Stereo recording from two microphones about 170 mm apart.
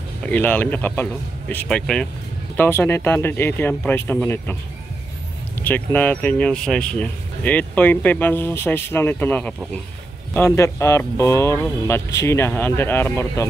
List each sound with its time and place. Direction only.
0.2 s speech: 10° left (ahead or behind)
5.6 s speech: 10° left (ahead or behind)